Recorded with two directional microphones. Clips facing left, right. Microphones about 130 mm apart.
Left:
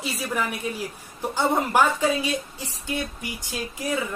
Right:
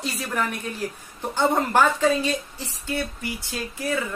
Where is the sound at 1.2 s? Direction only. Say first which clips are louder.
Right 1 dB; 10° left (ahead or behind).